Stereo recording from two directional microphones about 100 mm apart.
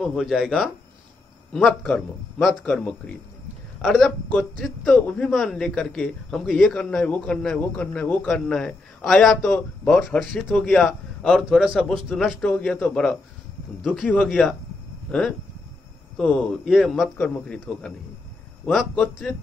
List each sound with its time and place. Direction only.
0.0 s a man's voice: centre (ahead or behind)
2.6 s a man's voice: 15° left (ahead or behind)
3.8 s a man's voice: 5° right (ahead or behind)
4.3 s a man's voice: 10° left (ahead or behind)
12.4 s a man's voice: 15° left (ahead or behind)
12.8 s a man's voice: 5° left (ahead or behind)